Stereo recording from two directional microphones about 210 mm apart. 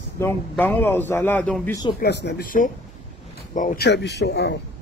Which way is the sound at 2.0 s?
50° left (ahead or behind).